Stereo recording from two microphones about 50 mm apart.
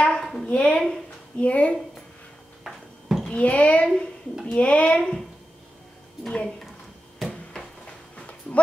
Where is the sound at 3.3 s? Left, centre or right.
Left.